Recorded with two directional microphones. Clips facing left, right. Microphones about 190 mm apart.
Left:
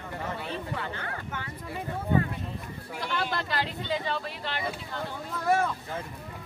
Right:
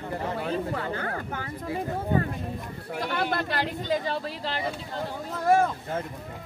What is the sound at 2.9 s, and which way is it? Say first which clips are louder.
Speech: right 4 dB; 55° right (ahead or behind).